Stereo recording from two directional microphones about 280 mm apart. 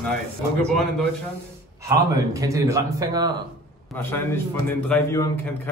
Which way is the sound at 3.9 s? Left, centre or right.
Centre.